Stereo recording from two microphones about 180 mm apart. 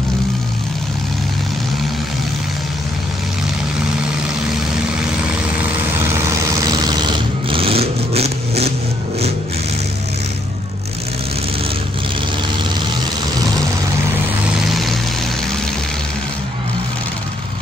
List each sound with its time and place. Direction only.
6.6 s vehicle: 20° right (ahead or behind)
14.7 s vehicle: centre (ahead or behind)